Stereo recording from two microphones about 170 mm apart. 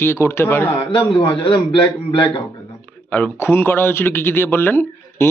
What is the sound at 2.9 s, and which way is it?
A man's voice, 5° left (ahead or behind).